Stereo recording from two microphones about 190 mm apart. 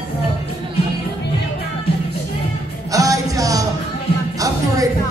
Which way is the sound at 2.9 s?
20° right (ahead or behind).